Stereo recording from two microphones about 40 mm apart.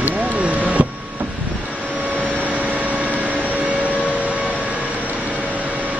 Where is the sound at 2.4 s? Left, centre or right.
Right.